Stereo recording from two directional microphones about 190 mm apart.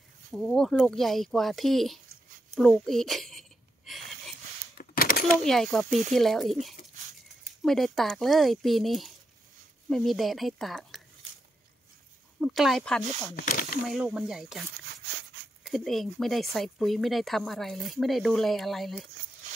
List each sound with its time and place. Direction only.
0.3 s speech: 5° left (ahead or behind)
2.5 s a sound: centre (ahead or behind)
4.7 s a sound: 50° left (ahead or behind)
5.4 s speech: centre (ahead or behind)
12.4 s speech: centre (ahead or behind)
13.4 s speech: 45° left (ahead or behind)
13.8 s speech: centre (ahead or behind)
15.0 s dog: 65° right (ahead or behind)
15.6 s speech: centre (ahead or behind)